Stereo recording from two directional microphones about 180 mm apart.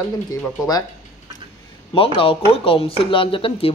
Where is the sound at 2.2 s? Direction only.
30° left (ahead or behind).